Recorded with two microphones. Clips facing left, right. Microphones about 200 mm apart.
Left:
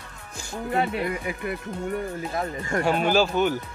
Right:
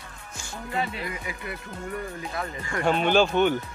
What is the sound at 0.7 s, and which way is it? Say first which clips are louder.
Speech: left 5 dB; 55° left (ahead or behind).